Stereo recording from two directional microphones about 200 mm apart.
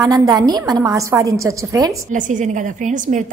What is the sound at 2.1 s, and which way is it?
A woman's voice, 40° right (ahead or behind).